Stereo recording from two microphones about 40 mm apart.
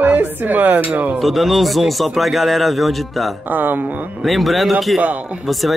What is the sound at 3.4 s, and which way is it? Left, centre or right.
Speech, right.